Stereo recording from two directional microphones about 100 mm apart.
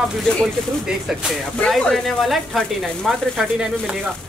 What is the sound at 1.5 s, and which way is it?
Speech, 10° left (ahead or behind).